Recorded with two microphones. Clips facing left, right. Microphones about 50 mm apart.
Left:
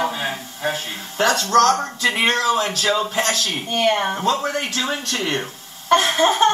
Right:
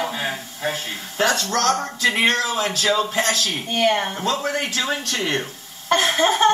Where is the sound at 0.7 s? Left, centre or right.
Centre.